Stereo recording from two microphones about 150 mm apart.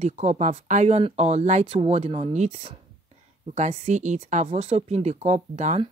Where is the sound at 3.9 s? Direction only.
55° right (ahead or behind).